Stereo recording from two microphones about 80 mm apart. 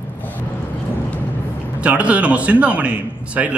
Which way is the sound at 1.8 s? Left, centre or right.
Centre.